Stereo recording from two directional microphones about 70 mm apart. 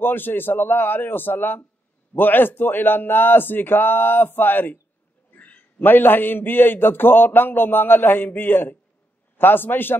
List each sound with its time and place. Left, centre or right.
0.0 s a man's voice: left